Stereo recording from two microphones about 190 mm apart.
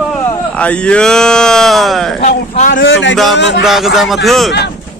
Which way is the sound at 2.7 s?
70° left (ahead or behind).